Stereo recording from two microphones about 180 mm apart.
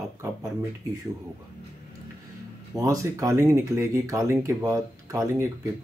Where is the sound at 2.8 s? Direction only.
20° right (ahead or behind).